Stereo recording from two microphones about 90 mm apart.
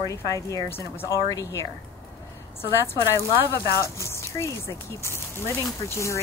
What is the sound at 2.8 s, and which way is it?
Speech, 30° left (ahead or behind).